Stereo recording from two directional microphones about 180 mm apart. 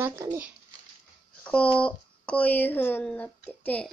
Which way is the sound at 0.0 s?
15° right (ahead or behind).